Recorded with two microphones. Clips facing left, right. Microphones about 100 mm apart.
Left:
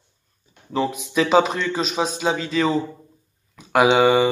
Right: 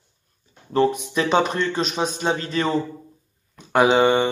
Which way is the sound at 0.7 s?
Centre (ahead or behind).